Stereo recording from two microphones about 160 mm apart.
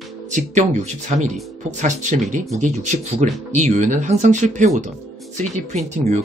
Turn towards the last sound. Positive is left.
turn(degrees=-45)  # may be behind; listen again after turning